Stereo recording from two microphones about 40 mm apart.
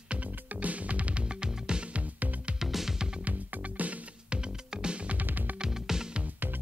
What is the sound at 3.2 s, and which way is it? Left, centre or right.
Music, right.